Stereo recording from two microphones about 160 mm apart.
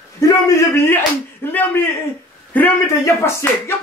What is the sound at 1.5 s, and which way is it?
Speech, 10° left (ahead or behind).